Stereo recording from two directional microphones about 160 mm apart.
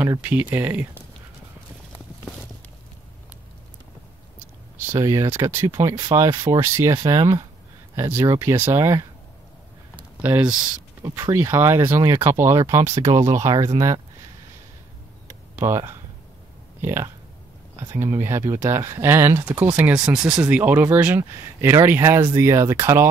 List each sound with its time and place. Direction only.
0.0 s speech: 10° right (ahead or behind)
4.7 s speech: 15° right (ahead or behind)
9.9 s a sound: 10° right (ahead or behind)
11.0 s speech: 20° right (ahead or behind)
15.5 s speech: 15° right (ahead or behind)